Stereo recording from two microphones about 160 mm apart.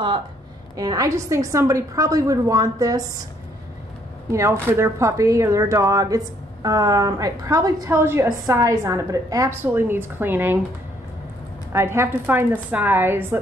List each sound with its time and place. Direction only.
0.7 s speech: 20° right (ahead or behind)
4.3 s speech: 20° right (ahead or behind)
11.7 s a woman's voice: 15° right (ahead or behind)